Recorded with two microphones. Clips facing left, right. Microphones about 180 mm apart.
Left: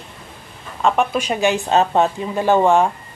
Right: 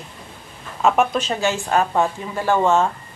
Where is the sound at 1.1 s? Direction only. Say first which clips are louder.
Left 3 dB; 15° left (ahead or behind).